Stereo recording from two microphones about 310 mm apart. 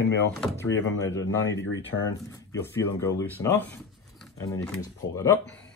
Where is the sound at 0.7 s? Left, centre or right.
Left.